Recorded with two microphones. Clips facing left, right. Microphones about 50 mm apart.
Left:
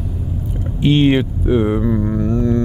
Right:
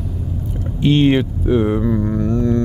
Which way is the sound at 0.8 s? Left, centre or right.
Centre.